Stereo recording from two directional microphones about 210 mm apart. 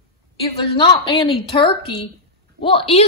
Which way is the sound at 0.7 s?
25° left (ahead or behind).